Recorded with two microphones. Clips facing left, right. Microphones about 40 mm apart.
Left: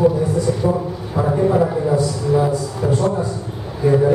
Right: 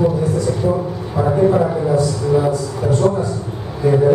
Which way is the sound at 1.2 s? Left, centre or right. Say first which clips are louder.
Right 2 dB; centre.